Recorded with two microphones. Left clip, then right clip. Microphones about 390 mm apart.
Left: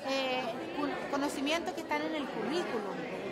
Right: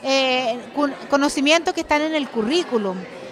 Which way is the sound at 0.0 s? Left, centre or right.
Right.